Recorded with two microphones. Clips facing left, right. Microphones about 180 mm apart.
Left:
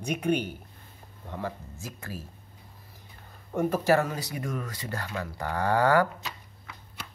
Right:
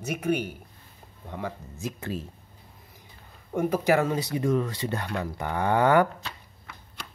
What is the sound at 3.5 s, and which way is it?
Speech, 15° right (ahead or behind).